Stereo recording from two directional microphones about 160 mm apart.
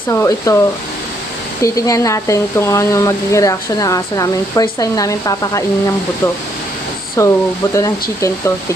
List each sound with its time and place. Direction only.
0.1 s speech: 20° left (ahead or behind)
1.6 s speech: 20° left (ahead or behind)